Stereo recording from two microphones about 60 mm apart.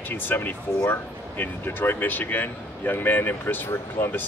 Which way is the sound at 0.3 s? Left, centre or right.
Left.